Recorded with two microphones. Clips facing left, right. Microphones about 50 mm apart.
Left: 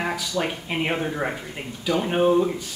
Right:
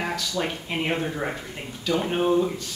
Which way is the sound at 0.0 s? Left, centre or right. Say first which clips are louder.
Left 2 dB; centre.